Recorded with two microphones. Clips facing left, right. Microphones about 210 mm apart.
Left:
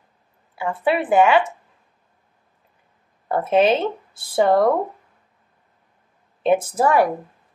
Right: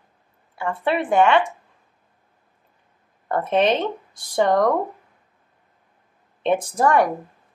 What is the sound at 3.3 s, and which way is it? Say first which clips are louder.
Speech: left 2 dB; 5° left (ahead or behind).